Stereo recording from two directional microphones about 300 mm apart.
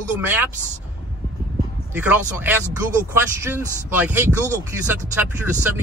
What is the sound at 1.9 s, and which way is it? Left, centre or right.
Speech, centre.